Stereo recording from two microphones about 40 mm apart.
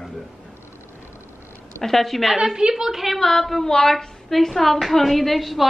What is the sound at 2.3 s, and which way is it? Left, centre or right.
Speech, centre.